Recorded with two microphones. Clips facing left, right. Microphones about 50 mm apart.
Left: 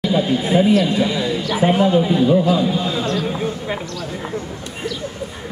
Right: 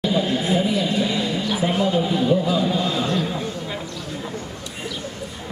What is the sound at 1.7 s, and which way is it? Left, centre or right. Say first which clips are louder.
Speech: left 7 dB; left.